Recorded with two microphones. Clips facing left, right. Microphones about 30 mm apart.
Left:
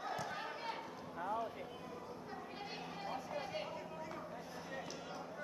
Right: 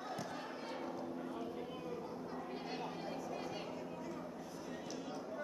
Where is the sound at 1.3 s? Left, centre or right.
Centre.